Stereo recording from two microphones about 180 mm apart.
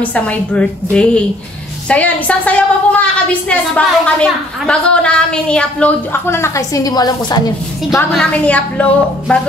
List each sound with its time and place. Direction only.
0.0 s a woman's voice: 10° left (ahead or behind)
8.1 s a woman's voice: 5° left (ahead or behind)